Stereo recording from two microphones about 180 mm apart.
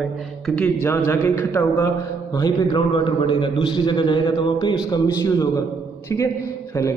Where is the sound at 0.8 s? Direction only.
10° left (ahead or behind).